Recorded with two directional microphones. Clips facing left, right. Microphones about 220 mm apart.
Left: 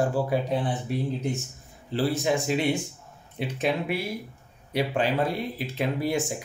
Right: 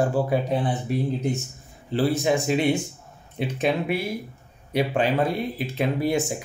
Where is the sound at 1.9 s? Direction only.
20° right (ahead or behind).